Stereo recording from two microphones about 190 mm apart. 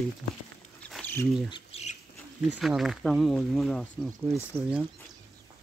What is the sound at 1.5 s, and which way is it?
Rodents, 35° left (ahead or behind).